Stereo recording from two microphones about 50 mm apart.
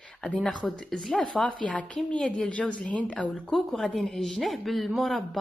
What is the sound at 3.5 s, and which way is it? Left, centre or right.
A woman's voice, centre.